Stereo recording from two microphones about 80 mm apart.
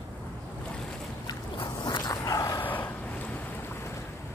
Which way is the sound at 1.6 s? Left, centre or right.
Left.